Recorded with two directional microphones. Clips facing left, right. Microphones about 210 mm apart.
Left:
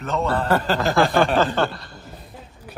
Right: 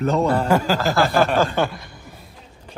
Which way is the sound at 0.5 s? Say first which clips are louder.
Right 1 dB; 10° right (ahead or behind).